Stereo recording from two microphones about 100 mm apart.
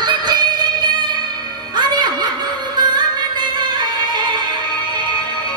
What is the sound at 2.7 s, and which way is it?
Music, 45° right (ahead or behind).